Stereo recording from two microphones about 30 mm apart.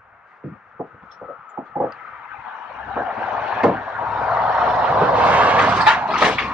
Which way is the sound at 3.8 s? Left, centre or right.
Right.